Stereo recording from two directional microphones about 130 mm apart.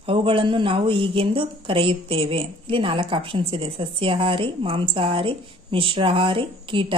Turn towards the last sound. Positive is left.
turn(degrees=-40)  # may be behind; listen again after turning